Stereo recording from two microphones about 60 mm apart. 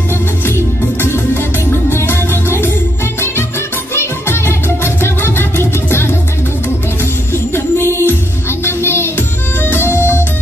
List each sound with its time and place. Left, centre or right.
1.0 s music: left
3.9 s music: left
7.5 s music: left